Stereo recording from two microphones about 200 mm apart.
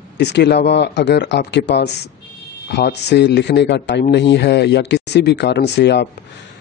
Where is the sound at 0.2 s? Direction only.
60° left (ahead or behind).